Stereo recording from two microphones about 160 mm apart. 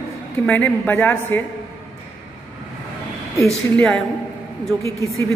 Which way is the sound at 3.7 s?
5° left (ahead or behind).